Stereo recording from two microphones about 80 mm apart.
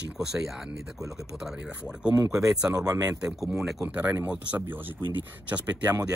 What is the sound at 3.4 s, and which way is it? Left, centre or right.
Speech, centre.